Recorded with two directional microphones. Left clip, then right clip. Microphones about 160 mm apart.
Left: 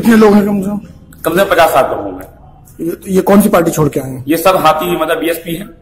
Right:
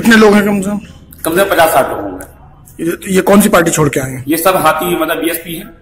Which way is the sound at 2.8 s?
10° left (ahead or behind).